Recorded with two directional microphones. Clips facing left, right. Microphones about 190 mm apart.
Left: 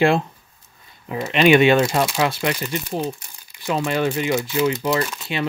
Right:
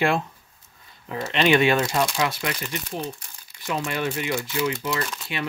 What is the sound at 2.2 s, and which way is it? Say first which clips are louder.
Speech: left 5 dB; 30° left (ahead or behind).